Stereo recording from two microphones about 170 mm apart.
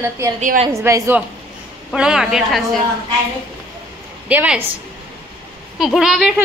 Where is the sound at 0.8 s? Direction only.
15° right (ahead or behind).